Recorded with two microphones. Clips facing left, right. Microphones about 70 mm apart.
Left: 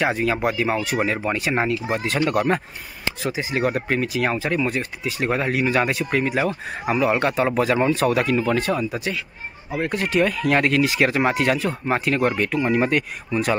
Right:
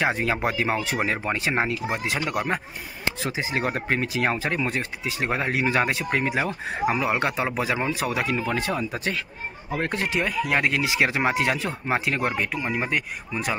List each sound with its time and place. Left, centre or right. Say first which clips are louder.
0.0 s speech: left 3 dB; right
3.2 s speech: left 5 dB; right
9.7 s speech: left 2 dB; right
9.9 s speech: left 6 dB; centre